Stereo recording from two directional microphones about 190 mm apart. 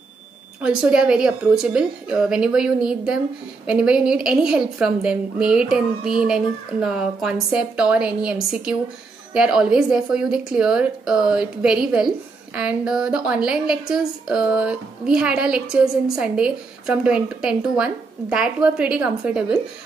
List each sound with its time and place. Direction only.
0.6 s a woman's voice: 5° right (ahead or behind)